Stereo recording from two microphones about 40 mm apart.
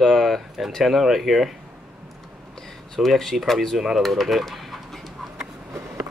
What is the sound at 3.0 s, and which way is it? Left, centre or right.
Speech, centre.